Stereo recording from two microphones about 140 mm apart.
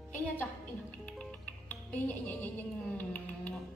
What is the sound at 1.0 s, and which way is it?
Music, 10° left (ahead or behind).